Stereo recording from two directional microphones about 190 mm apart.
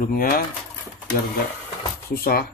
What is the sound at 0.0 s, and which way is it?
Speech, 50° left (ahead or behind).